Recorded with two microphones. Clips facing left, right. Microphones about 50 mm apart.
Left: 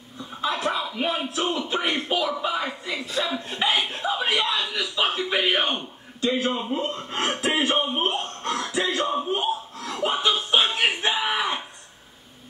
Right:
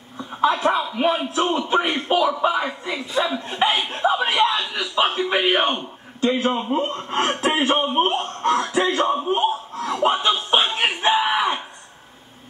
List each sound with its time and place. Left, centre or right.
0.4 s speech: right
0.7 s speech: centre
1.3 s a man's voice: right
3.1 s speech: centre
3.6 s a man's voice: right
9.3 s chuckle: right
11.3 s a sound: right